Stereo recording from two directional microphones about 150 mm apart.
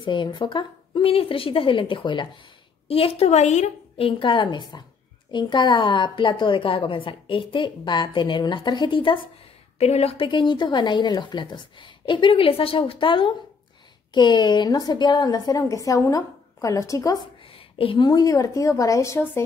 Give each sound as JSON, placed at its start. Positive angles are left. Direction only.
{"t": 0.0, "sound": "a woman's voice", "side_deg": 30}
{"t": 4.1, "sound": "a woman's voice", "side_deg": 35}
{"t": 9.8, "sound": "a woman's voice", "side_deg": 45}
{"t": 17.5, "sound": "a woman's voice", "side_deg": 40}